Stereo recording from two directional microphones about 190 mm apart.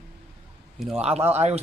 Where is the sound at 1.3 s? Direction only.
35° right (ahead or behind).